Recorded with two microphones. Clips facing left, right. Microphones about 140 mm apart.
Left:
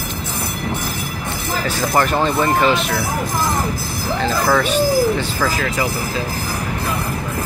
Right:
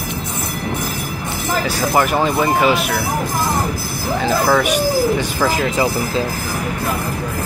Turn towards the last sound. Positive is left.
turn(degrees=-25)  # may be behind; listen again after turning